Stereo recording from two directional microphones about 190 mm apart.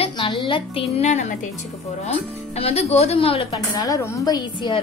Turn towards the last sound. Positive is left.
turn(degrees=20)  # may be behind; listen again after turning